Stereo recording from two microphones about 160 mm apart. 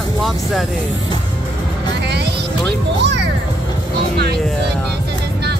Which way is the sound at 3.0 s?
90° right.